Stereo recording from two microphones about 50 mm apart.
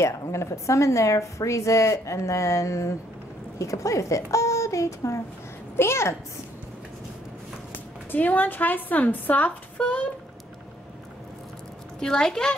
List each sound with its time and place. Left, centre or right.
0.0 s a woman's voice: left
5.8 s a woman's voice: left
8.1 s speech: left
12.0 s a woman's voice: centre